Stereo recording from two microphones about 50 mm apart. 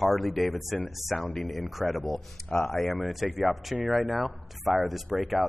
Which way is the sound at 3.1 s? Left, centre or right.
Centre.